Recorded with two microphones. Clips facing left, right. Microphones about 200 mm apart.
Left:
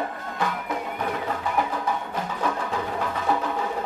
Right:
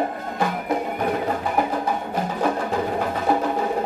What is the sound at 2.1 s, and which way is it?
Music, 40° right (ahead or behind).